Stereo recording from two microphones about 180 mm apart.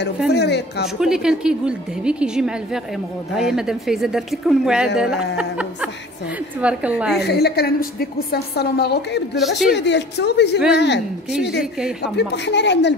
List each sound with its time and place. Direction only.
0.3 s a woman's voice: 70° left (ahead or behind)
0.9 s a woman's voice: 5° right (ahead or behind)
7.2 s a woman's voice: 65° left (ahead or behind)
12.2 s a woman's voice: 70° left (ahead or behind)